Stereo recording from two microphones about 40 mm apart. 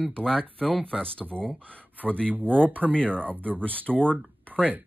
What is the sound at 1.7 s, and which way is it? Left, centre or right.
Speech, right.